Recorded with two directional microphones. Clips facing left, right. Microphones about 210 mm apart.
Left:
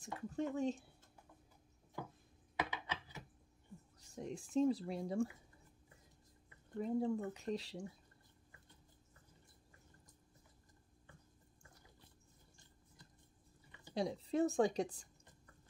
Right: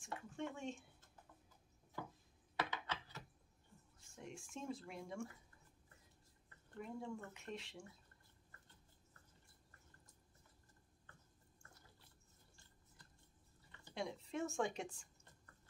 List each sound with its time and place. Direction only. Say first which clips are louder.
0.0 s speech: left 6 dB; 40° left (ahead or behind)
2.5 s a sound: left 2 dB; 10° left (ahead or behind)
4.0 s speech: left 8 dB; 35° left (ahead or behind)
6.8 s speech: left 11 dB; 35° left (ahead or behind)
13.9 s speech: left 8 dB; 35° left (ahead or behind)